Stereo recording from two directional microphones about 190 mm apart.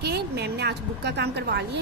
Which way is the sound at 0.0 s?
60° right (ahead or behind).